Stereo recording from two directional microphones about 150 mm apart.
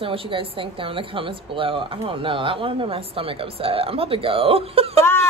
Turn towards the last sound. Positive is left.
turn(degrees=15)  # may be behind; listen again after turning